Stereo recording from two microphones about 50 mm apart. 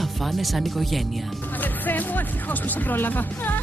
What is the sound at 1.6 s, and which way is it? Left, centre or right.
Speech, left.